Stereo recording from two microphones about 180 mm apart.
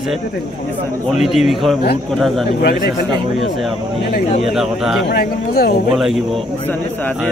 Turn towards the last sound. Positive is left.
turn(degrees=60)  # may be behind; listen again after turning